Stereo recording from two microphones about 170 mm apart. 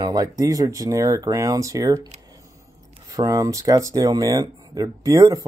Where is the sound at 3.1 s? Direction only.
20° right (ahead or behind).